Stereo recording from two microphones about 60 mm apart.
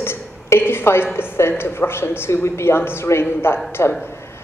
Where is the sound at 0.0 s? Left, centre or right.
Left.